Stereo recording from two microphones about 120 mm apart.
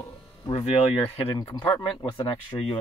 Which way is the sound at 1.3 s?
30° left (ahead or behind).